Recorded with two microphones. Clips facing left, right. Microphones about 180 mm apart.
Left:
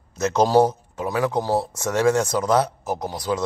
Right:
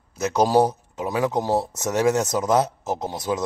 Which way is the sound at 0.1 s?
10° right (ahead or behind).